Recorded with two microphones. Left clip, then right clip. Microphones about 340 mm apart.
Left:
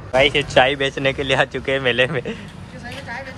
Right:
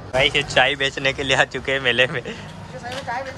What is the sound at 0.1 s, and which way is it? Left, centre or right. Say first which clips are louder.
Speech: left 3 dB; centre.